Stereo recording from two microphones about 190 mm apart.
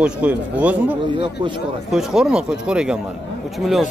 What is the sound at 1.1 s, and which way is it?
Speech, 25° right (ahead or behind).